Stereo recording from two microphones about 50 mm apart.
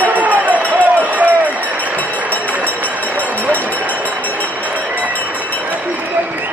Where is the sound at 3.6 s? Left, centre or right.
Right.